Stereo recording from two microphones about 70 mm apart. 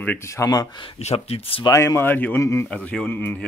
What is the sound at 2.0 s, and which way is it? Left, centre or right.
Speech, left.